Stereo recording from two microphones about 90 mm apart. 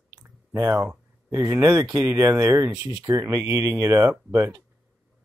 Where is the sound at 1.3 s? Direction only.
35° right (ahead or behind).